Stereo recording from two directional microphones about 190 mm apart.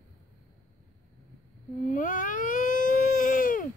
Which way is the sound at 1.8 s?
45° left (ahead or behind).